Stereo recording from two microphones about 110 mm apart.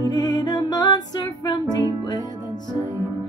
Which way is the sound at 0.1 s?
35° left (ahead or behind).